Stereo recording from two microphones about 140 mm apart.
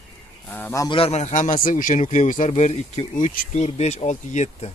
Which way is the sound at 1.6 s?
70° left (ahead or behind).